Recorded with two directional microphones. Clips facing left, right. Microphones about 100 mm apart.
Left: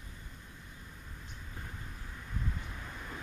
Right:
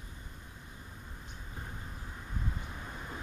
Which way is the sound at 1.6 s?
20° right (ahead or behind).